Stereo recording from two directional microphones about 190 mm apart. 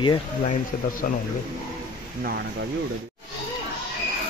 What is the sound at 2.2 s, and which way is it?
Speech, 50° right (ahead or behind).